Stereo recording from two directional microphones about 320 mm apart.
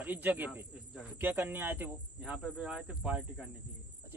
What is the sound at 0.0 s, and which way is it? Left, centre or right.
Speech, centre.